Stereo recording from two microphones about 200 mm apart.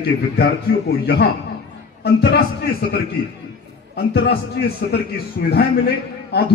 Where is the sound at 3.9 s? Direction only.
50° left (ahead or behind).